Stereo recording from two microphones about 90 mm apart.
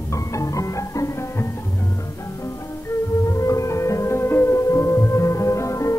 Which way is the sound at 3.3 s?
35° left (ahead or behind).